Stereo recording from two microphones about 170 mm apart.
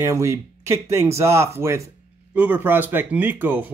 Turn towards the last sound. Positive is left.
turn(degrees=-10)  # may be behind; listen again after turning